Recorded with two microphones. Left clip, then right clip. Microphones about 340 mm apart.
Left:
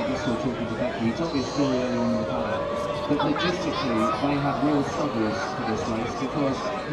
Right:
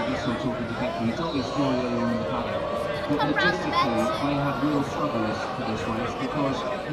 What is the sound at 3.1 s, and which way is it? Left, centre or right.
Speech, centre.